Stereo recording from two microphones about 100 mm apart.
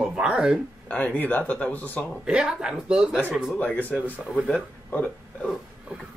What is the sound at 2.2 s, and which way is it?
Speech, 5° right (ahead or behind).